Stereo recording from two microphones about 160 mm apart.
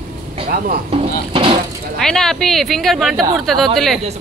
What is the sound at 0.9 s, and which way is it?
Speech, 35° right (ahead or behind).